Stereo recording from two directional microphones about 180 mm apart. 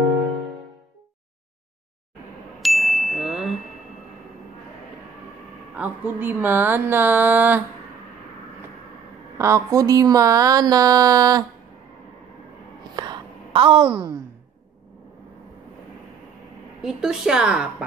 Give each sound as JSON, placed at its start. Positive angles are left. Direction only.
{"t": 0.0, "sound": "music", "side_deg": 0}
{"t": 2.6, "sound": "ding", "side_deg": 0}
{"t": 5.8, "sound": "speech", "side_deg": -10}
{"t": 9.4, "sound": "speech", "side_deg": -15}
{"t": 12.9, "sound": "a sound", "side_deg": -25}
{"t": 16.8, "sound": "a woman's voice", "side_deg": -5}